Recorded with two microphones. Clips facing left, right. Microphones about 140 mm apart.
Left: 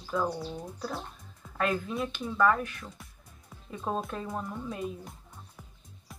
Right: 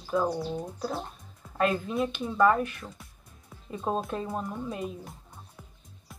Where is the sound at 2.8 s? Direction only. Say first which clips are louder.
Right 2 dB; centre (ahead or behind).